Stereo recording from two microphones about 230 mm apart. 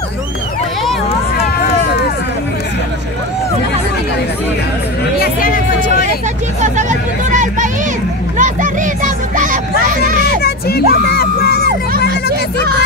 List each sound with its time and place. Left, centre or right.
5.2 s a sound: left
6.6 s vehicle: right
8.4 s music: right
10.4 s crowd: left